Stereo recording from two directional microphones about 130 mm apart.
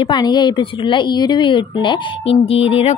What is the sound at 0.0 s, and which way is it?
A woman's voice, 35° left (ahead or behind).